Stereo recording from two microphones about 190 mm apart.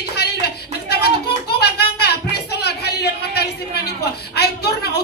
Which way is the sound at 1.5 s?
60° left (ahead or behind).